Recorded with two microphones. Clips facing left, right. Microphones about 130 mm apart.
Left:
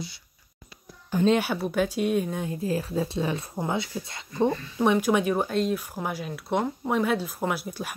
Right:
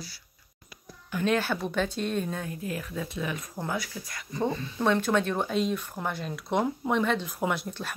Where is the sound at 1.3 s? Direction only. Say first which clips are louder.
Left 3 dB; 10° left (ahead or behind).